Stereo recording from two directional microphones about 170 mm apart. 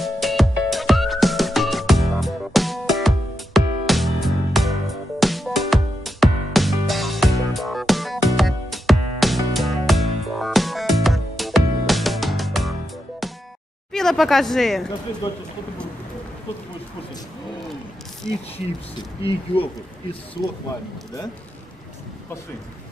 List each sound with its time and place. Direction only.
0.0 s music: centre (ahead or behind)
13.9 s speech: centre (ahead or behind)
15.2 s speech: 25° left (ahead or behind)
18.9 s speech: 30° left (ahead or behind)